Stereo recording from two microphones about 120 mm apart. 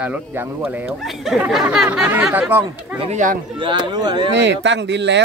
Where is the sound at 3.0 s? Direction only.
80° right.